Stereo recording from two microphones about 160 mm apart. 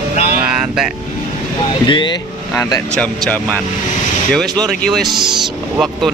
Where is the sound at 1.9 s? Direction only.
30° left (ahead or behind).